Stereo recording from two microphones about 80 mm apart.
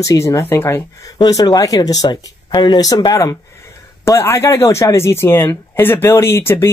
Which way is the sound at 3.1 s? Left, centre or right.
Left.